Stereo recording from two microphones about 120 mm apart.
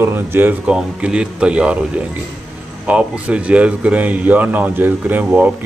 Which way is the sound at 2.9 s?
10° right (ahead or behind).